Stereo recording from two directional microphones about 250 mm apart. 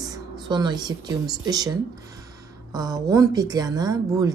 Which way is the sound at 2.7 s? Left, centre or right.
Centre.